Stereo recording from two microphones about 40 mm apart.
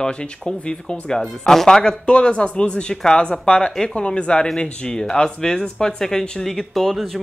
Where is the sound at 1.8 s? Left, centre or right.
Left.